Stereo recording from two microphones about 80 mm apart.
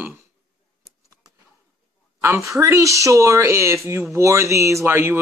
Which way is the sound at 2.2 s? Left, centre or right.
Right.